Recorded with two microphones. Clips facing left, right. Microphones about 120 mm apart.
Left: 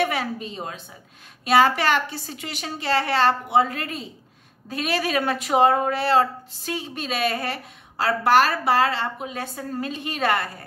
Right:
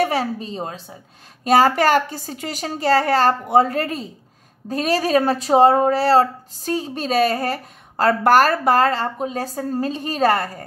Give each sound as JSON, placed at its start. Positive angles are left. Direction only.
{"t": 0.0, "sound": "speech", "side_deg": -35}